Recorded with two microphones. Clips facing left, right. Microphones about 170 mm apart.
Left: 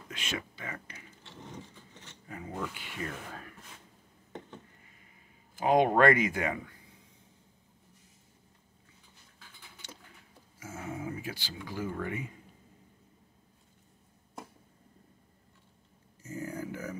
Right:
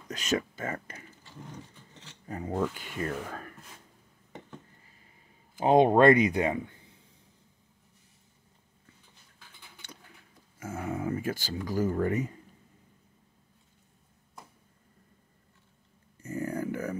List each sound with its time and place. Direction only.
0.1 s speech: 40° right (ahead or behind)
2.2 s speech: 40° right (ahead or behind)
5.6 s speech: 25° right (ahead or behind)
9.8 s a sound: 60° right (ahead or behind)
10.6 s speech: 60° right (ahead or behind); by 12.4 s 40° right (ahead or behind)
16.2 s a sound: 60° right (ahead or behind)